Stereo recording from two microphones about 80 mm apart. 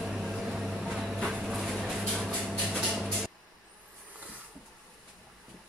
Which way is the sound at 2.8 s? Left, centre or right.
Centre.